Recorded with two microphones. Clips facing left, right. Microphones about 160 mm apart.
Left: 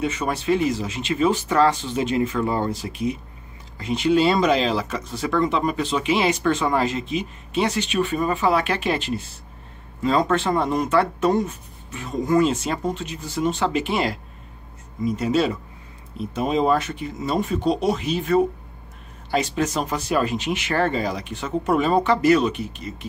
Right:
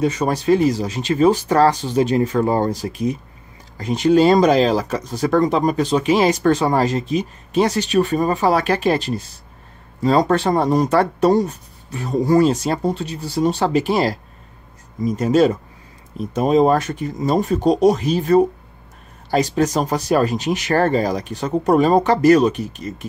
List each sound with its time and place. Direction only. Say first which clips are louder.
0.0 s speech: right 5 dB; 40° right (ahead or behind)